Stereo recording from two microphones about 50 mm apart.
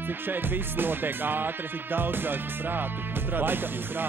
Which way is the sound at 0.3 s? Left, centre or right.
Right.